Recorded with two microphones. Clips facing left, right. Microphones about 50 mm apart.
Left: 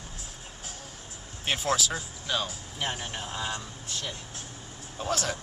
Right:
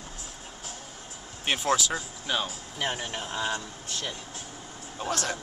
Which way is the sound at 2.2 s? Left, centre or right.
Centre.